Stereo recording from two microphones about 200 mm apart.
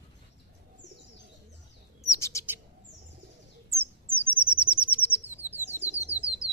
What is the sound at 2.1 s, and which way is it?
Bird, 15° left (ahead or behind).